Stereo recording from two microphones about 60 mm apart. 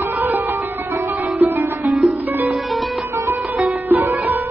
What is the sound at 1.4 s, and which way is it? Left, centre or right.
Music, centre.